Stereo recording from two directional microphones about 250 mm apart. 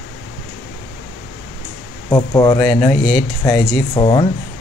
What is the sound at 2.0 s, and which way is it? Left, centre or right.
Speech, centre.